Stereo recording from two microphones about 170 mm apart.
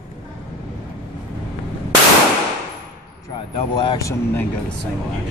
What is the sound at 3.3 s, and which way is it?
Speech, 30° left (ahead or behind).